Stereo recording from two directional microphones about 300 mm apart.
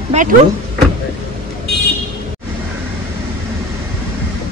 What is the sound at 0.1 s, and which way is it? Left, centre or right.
Speech, right.